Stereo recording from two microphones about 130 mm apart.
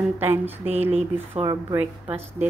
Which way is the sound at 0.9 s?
45° right (ahead or behind).